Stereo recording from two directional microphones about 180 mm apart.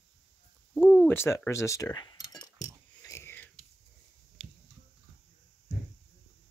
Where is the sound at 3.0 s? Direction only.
15° left (ahead or behind).